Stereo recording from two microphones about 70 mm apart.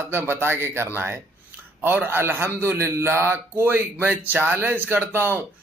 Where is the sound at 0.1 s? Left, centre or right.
Right.